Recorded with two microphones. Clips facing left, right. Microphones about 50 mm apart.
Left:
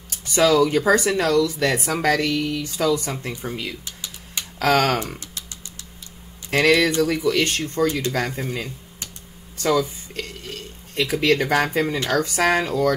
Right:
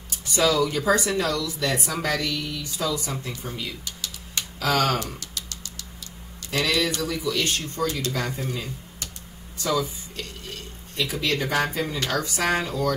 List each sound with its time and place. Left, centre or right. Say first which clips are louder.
0.3 s speech: left 5 dB; left
6.5 s speech: left 7 dB; left
9.6 s speech: left 5 dB; left